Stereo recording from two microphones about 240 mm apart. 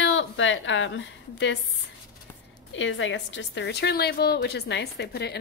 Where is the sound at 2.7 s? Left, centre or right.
Left.